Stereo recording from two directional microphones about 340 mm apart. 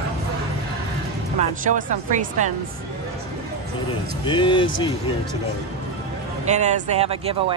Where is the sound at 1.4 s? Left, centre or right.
Right.